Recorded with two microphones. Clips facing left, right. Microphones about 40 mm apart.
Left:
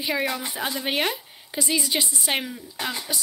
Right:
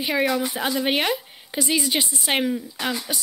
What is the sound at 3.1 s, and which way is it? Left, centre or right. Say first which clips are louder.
Speech: right 1 dB; right.